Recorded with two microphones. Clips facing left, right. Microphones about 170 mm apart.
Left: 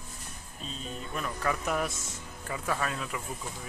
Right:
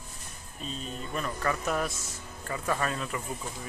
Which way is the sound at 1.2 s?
10° left (ahead or behind).